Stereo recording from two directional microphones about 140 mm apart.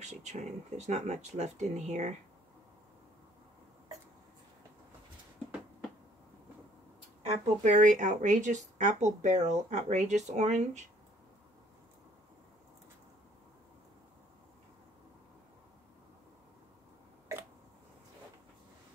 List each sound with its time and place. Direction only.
0.0 s speech: 55° right (ahead or behind)
7.2 s speech: 60° right (ahead or behind)